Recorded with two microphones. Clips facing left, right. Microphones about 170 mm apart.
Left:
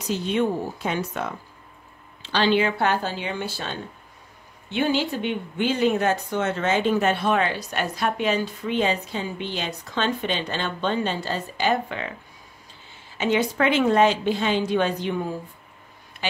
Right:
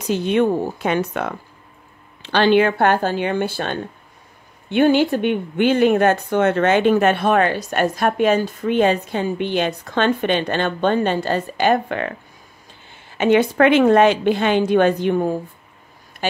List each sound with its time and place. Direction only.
0.1 s speech: 60° right (ahead or behind)
13.2 s speech: 60° right (ahead or behind)